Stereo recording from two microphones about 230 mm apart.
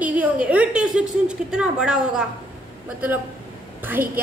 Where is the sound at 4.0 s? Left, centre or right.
Right.